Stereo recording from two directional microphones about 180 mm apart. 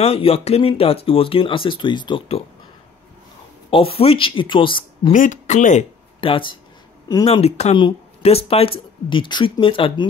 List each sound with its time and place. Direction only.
0.0 s speech: 35° left (ahead or behind)
3.7 s speech: 30° left (ahead or behind)
5.1 s speech: 45° left (ahead or behind); by 10.0 s 30° left (ahead or behind)